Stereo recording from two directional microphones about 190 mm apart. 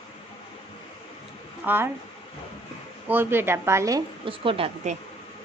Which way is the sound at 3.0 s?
10° right (ahead or behind).